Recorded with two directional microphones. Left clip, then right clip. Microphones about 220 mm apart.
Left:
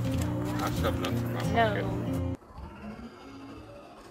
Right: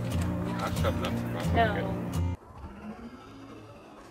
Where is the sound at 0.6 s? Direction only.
40° left (ahead or behind).